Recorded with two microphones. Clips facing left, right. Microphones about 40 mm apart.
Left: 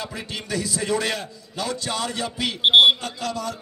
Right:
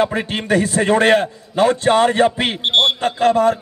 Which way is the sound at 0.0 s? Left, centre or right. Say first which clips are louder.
Right 13 dB; right.